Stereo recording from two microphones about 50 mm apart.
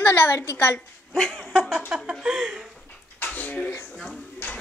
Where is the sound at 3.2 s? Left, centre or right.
Left.